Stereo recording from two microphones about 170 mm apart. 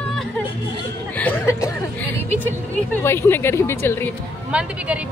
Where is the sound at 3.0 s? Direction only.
15° left (ahead or behind).